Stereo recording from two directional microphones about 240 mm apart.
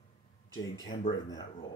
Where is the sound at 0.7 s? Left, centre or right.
Centre.